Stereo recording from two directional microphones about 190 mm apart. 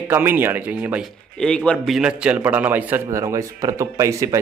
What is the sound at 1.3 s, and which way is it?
Speech, 5° left (ahead or behind).